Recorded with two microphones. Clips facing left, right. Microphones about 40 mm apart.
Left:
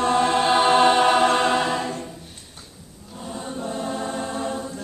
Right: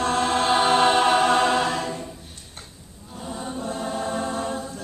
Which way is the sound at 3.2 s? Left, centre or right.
Centre.